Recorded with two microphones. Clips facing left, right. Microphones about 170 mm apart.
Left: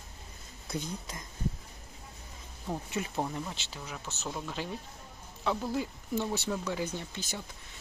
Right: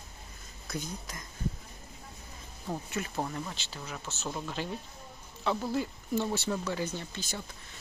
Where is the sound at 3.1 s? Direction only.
10° left (ahead or behind).